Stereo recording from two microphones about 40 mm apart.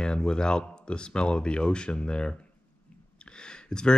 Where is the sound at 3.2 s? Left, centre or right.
Left.